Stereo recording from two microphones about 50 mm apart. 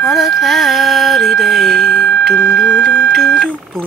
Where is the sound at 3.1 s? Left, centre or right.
Centre.